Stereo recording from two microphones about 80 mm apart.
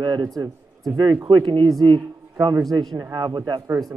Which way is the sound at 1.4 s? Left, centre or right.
Right.